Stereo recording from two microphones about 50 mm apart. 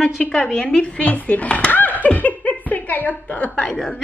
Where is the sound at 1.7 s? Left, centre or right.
Left.